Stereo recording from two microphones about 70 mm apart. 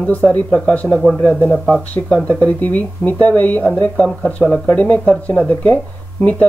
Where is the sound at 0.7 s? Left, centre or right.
Centre.